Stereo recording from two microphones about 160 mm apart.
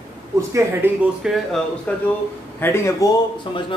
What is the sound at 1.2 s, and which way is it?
Speech, centre (ahead or behind).